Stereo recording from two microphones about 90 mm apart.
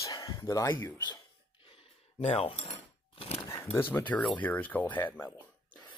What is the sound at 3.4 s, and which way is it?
Speech, 30° left (ahead or behind).